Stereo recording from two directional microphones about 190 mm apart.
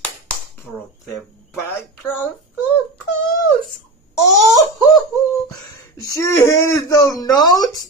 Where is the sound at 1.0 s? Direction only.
5° left (ahead or behind).